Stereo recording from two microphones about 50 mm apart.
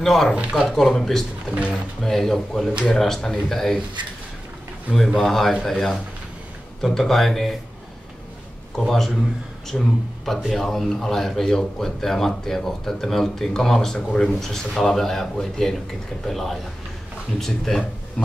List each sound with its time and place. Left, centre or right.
0.0 s speech: centre
0.4 s speech: right
0.7 s speech: centre
4.9 s speech: centre
8.7 s a man's voice: centre